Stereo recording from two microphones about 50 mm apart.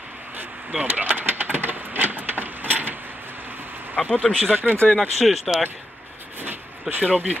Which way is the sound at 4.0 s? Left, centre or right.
Left.